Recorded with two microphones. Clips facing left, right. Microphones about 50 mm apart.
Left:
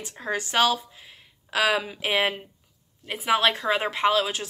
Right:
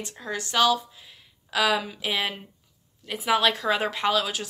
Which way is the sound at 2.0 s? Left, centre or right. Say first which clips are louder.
Left 4 dB; left.